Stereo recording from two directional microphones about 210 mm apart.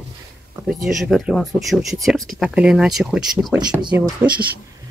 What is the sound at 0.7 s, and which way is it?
Speech, centre (ahead or behind).